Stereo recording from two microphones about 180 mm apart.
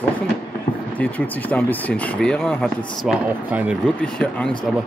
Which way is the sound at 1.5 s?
10° left (ahead or behind).